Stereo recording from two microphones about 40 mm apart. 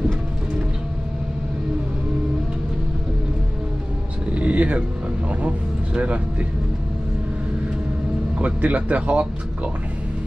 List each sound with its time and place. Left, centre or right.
4.3 s music: right
5.9 s speech: right
8.4 s speech: right